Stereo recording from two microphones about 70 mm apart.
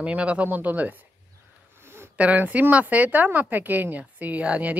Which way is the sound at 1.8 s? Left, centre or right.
Right.